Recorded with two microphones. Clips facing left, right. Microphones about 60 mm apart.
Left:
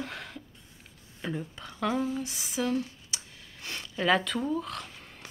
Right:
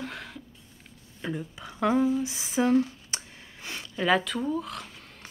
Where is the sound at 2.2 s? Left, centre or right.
Right.